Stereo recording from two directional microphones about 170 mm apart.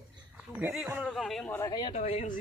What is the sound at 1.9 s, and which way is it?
Speech, 40° left (ahead or behind).